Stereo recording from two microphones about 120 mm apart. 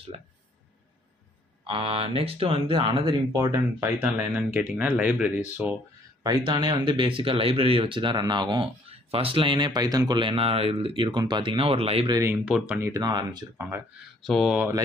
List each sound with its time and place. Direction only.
1.7 s speech: 50° right (ahead or behind)
3.3 s speech: 30° right (ahead or behind)
3.8 s speech: 15° right (ahead or behind)
6.2 s speech: 40° right (ahead or behind)
8.8 s speech: 55° right (ahead or behind)
12.4 s speech: 10° right (ahead or behind)
12.9 s speech: 35° right (ahead or behind)
13.6 s speech: 20° right (ahead or behind)
14.2 s speech: centre (ahead or behind)